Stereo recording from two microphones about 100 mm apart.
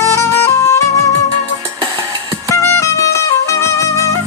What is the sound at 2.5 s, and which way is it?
Music, 30° left (ahead or behind).